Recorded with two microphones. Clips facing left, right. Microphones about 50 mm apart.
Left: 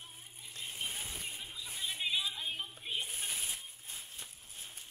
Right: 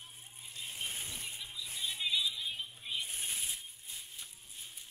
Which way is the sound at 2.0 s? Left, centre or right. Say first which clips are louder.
Right 1 dB; left.